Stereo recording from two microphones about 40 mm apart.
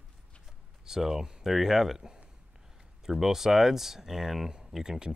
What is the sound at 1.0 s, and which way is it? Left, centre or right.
Speech, centre.